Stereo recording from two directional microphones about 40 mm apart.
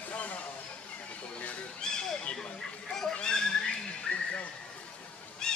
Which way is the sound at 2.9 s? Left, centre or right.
Centre.